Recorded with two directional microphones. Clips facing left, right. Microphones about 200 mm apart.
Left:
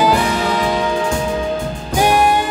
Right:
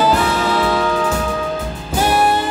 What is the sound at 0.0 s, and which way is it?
Music, 15° left (ahead or behind).